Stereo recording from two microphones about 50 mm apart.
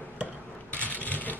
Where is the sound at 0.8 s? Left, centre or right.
Left.